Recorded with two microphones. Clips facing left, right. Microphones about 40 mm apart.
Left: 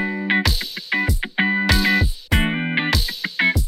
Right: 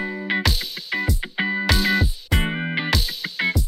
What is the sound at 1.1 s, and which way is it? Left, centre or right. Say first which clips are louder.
Music: left 4 dB; left.